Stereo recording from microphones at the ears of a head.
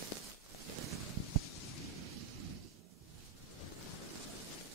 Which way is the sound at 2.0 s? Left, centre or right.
Right.